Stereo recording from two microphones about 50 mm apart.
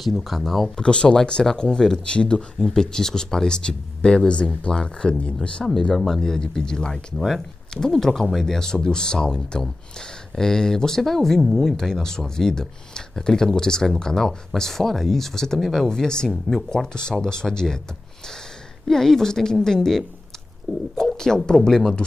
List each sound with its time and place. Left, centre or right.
0.0 s speech: centre
0.7 s speech: centre
5.9 s speech: centre
15.9 s speech: centre
18.9 s speech: centre
20.7 s speech: centre
21.0 s speech: centre